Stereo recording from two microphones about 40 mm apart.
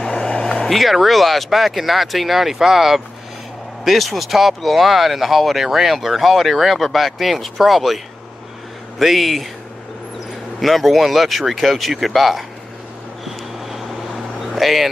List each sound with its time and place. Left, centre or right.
0.0 s vehicle: centre
0.7 s speech: centre
10.6 s speech: centre
13.2 s vehicle: centre